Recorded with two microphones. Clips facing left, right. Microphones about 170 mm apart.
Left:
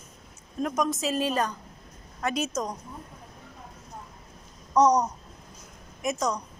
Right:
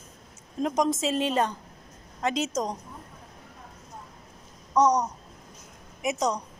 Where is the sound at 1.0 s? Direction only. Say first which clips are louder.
Right 1 dB; 25° right (ahead or behind).